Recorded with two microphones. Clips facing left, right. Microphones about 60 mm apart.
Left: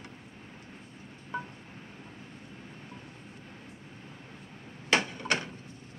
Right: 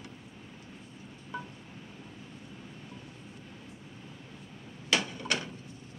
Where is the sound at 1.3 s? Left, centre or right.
Left.